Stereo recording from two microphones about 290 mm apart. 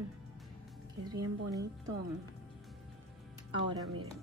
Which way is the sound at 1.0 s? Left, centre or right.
Centre.